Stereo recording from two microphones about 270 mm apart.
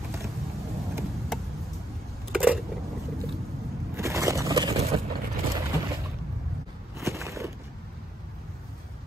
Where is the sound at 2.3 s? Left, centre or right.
Centre.